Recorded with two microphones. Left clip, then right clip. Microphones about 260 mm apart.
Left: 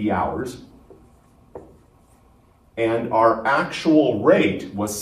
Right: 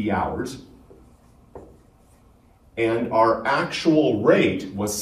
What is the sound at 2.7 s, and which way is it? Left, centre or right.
Speech, centre.